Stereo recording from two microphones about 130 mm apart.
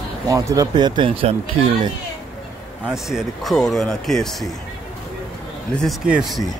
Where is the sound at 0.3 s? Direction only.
25° right (ahead or behind); by 1.3 s 45° right (ahead or behind).